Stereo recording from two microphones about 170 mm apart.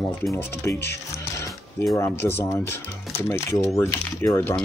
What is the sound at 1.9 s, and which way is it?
Speech, 15° left (ahead or behind).